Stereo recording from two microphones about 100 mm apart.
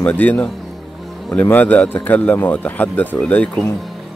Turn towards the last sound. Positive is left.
turn(degrees=15)  # may be behind; listen again after turning